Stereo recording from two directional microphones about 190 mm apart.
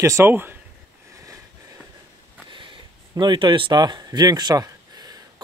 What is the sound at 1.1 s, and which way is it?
Sniff, 15° right (ahead or behind).